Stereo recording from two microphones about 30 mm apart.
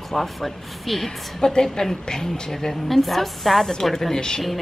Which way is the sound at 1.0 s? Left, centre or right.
Left.